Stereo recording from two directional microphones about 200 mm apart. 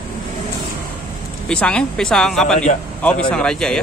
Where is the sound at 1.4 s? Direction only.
5° left (ahead or behind).